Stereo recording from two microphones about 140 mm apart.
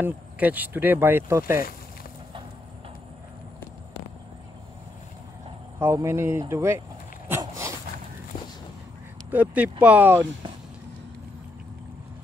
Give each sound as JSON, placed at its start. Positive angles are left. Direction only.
{"t": 0.0, "sound": "speech", "side_deg": -10}
{"t": 5.8, "sound": "speech", "side_deg": -20}
{"t": 7.2, "sound": "dog", "side_deg": -20}
{"t": 9.3, "sound": "speech", "side_deg": -10}